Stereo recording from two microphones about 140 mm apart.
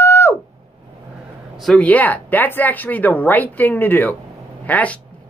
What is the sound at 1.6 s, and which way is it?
Speech, 5° left (ahead or behind).